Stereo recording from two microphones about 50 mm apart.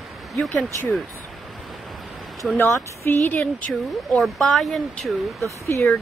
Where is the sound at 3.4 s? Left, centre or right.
Left.